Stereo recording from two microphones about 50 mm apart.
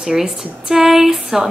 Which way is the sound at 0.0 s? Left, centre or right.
Centre.